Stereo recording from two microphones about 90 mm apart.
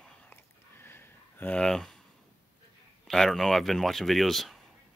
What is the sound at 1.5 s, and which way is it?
Speech, 5° left (ahead or behind).